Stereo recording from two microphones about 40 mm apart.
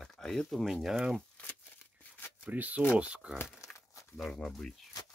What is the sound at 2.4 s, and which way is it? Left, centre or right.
Speech, right.